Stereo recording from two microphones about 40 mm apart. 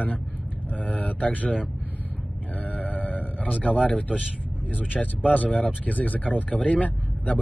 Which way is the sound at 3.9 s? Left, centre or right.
Left.